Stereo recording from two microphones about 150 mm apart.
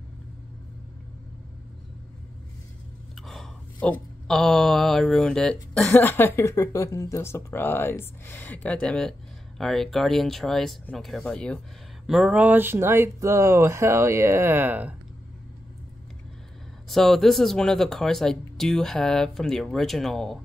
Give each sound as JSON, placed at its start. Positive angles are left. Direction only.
{"t": 3.3, "sound": "a sound", "side_deg": 0}
{"t": 3.9, "sound": "speech", "side_deg": 5}
{"t": 12.1, "sound": "speech", "side_deg": -5}
{"t": 16.9, "sound": "speech", "side_deg": 0}